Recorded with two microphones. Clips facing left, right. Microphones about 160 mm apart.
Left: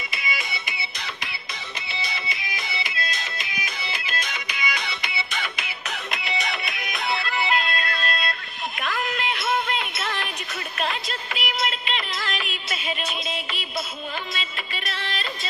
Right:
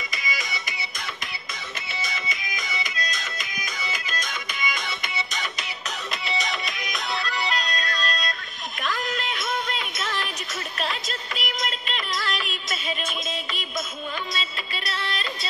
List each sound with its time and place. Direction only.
0.1 s music: 40° right (ahead or behind)
14.9 s music: 40° right (ahead or behind)